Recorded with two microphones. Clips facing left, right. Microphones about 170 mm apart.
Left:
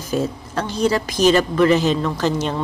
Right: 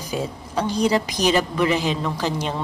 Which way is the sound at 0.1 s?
10° right (ahead or behind).